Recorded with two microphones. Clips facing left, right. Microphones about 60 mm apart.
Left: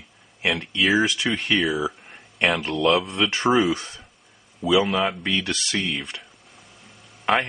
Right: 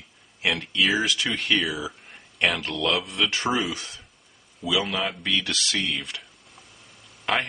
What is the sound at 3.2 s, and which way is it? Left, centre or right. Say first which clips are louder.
Speech: left 2 dB; centre.